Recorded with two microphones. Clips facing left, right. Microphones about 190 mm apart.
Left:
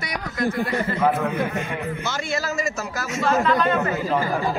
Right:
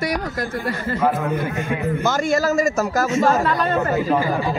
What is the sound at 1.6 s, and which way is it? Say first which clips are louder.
Speech: right 7 dB; 45° right (ahead or behind).